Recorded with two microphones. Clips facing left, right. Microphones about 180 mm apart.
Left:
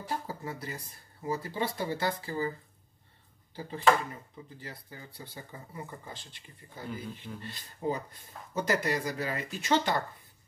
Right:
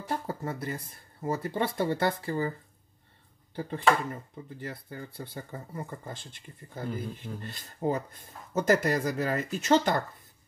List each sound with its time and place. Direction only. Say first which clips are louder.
0.3 s speech: right 5 dB; 50° right (ahead or behind)
3.5 s speech: even; 55° right (ahead or behind)